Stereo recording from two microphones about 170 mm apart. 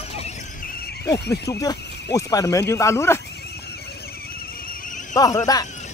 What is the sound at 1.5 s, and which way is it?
Speech, 20° left (ahead or behind).